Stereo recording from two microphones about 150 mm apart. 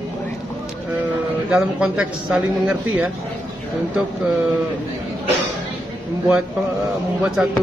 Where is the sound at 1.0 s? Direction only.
5° right (ahead or behind).